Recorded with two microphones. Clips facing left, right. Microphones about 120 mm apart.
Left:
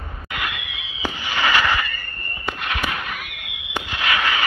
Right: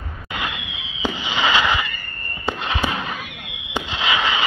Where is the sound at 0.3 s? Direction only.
25° right (ahead or behind).